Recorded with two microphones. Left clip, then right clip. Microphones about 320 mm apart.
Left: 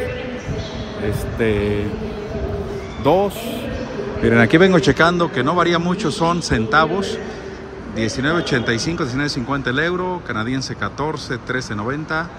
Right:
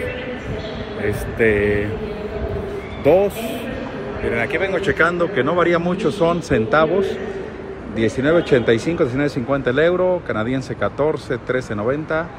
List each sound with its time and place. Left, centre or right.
1.4 s speech: centre
4.3 s a man's voice: left
4.9 s speech: centre